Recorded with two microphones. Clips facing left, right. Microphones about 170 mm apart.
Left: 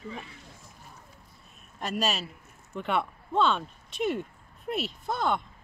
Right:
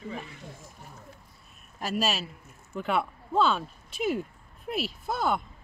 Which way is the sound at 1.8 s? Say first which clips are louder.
Right 1 dB; centre (ahead or behind).